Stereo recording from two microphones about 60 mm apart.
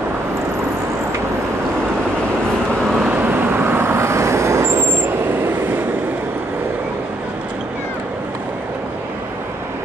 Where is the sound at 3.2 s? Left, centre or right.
Right.